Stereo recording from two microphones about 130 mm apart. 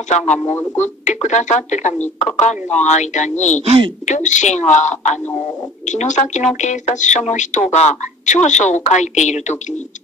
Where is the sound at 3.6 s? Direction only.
45° right (ahead or behind).